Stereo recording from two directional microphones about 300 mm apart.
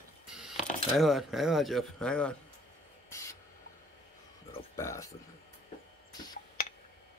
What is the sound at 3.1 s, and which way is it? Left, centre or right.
Spray, centre.